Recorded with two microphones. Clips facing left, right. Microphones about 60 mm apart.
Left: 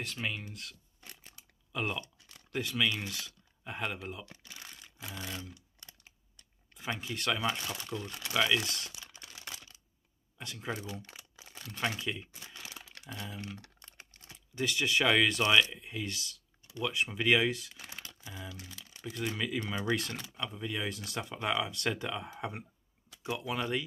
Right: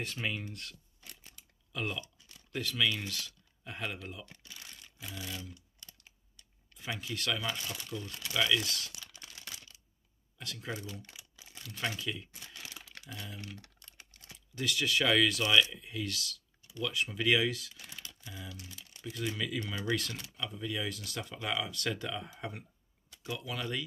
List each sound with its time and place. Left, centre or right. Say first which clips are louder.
0.0 s speech: right 1 dB; centre
1.7 s speech: left 2 dB; centre
4.5 s a sound: left 2 dB; left
7.0 s speech: left 3 dB; left
7.8 s a sound: left 2 dB; left
8.3 s speech: left 1 dB; centre
8.6 s crumpling: even; left
10.3 s speech: left 2 dB; left
11.4 s crumpling: left 2 dB; left
11.9 s speech: left 1 dB; left